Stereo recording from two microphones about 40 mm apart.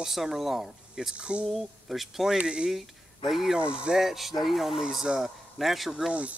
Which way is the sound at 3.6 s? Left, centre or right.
Right.